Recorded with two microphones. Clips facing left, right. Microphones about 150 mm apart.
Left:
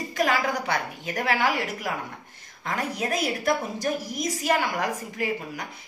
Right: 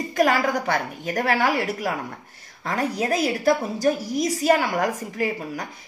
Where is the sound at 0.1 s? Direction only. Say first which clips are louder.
Right 4 dB; 45° right (ahead or behind).